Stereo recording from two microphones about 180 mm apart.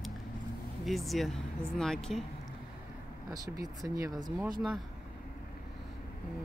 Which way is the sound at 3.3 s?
20° right (ahead or behind).